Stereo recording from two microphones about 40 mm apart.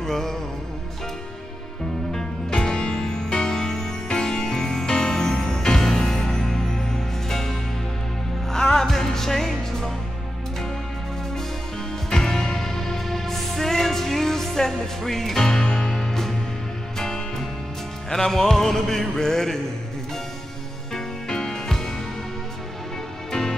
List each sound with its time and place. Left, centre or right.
0.0 s music: centre
2.1 s music: centre
12.1 s music: centre
20.9 s music: centre